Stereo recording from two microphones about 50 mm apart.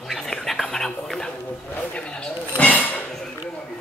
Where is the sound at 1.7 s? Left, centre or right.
Left.